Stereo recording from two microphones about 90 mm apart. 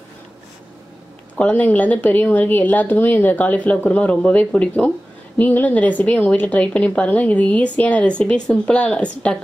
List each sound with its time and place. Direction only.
1.4 s speech: 15° left (ahead or behind)